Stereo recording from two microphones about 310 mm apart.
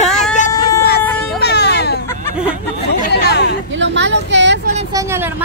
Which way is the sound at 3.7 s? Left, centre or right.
Right.